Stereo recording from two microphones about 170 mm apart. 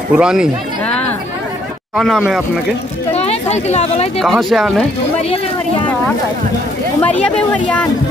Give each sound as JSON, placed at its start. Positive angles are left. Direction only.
{"t": 0.1, "sound": "speech", "side_deg": -5}
{"t": 2.0, "sound": "speech", "side_deg": 0}
{"t": 3.2, "sound": "speech", "side_deg": 40}
{"t": 4.2, "sound": "speech", "side_deg": 0}
{"t": 7.0, "sound": "speech", "side_deg": 10}